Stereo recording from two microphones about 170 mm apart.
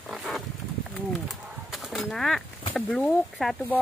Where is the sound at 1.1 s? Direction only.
Centre (ahead or behind).